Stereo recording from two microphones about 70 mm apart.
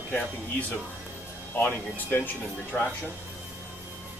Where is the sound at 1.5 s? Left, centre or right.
Left.